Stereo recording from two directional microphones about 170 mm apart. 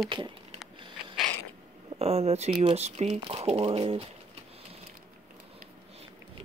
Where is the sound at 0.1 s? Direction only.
30° right (ahead or behind).